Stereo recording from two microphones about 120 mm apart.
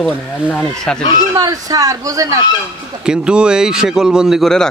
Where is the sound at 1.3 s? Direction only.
30° right (ahead or behind).